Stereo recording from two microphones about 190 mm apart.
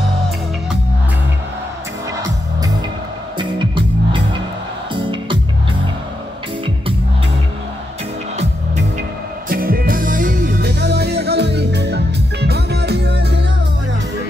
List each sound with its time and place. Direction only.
3.3 s music: 25° right (ahead or behind)
9.5 s music: 50° right (ahead or behind)